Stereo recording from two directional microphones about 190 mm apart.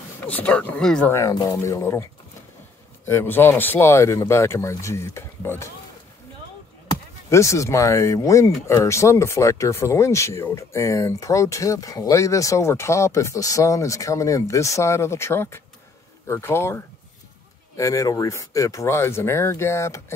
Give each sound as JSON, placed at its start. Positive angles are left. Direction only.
{"t": 0.3, "sound": "speech", "side_deg": 10}
{"t": 1.1, "sound": "speech", "side_deg": 20}
{"t": 3.1, "sound": "speech", "side_deg": 10}
{"t": 7.2, "sound": "speech", "side_deg": 15}